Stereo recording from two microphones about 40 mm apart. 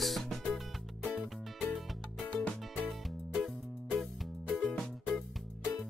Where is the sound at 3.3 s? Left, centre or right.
Centre.